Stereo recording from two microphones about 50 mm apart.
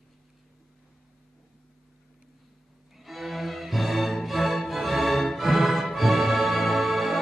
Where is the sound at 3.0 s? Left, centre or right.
Centre.